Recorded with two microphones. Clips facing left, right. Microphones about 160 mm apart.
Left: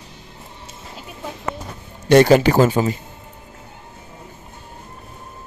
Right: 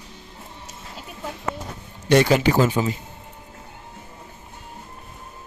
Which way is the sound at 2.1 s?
45° left (ahead or behind).